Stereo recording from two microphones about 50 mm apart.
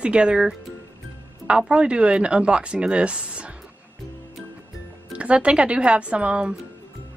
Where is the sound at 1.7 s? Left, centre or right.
Right.